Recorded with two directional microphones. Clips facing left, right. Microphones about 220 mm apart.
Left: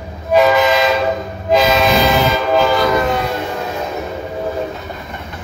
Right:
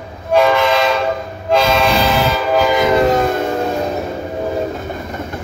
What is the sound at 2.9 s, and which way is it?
Train, 40° right (ahead or behind).